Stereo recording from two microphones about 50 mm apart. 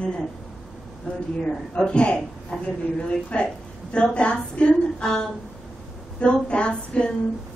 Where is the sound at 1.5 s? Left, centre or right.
Centre.